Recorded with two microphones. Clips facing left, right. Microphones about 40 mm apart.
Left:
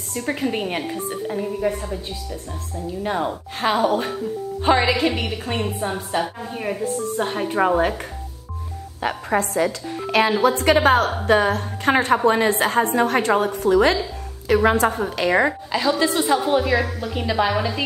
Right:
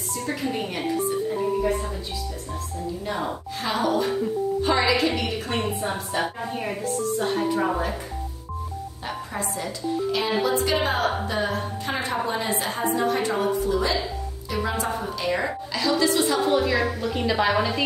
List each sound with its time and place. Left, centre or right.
0.2 s a woman's voice: left
3.0 s a woman's voice: left
6.5 s a woman's voice: centre
7.2 s a woman's voice: left
9.0 s a woman's voice: left
15.7 s a woman's voice: left
16.3 s a woman's voice: centre